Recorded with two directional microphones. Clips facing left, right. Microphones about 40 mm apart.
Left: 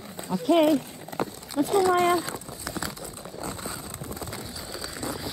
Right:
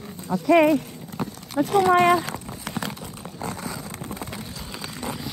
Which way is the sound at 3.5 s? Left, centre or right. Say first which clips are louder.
Right 3 dB; right.